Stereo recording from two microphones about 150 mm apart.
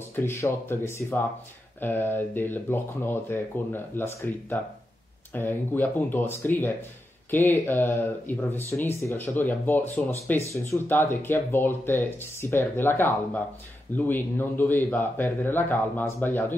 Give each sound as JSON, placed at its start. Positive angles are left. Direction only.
{"t": 0.2, "sound": "speech", "side_deg": 15}